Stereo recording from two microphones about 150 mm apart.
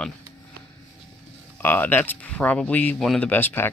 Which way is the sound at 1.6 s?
10° left (ahead or behind).